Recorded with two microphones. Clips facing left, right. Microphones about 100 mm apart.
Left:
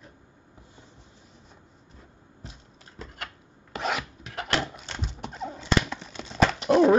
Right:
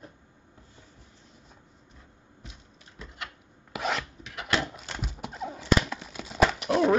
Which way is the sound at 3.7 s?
Centre (ahead or behind).